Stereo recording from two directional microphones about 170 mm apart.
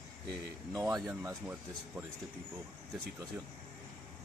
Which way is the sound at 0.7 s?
20° right (ahead or behind).